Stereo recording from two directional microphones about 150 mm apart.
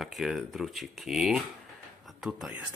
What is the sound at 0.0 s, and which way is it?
Speech, centre (ahead or behind).